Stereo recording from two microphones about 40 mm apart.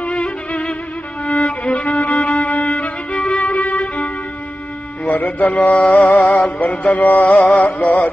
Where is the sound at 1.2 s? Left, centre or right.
Left.